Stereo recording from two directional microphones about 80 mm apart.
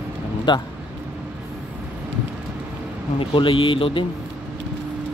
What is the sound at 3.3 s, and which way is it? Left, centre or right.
Speech, left.